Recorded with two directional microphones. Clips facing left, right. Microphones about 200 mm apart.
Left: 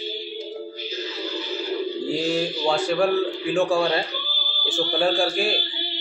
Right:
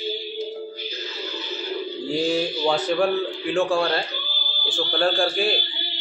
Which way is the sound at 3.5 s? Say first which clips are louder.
Left 1 dB; centre (ahead or behind).